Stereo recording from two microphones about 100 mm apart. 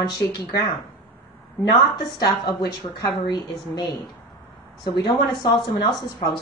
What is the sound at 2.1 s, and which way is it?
Speech, 45° left (ahead or behind).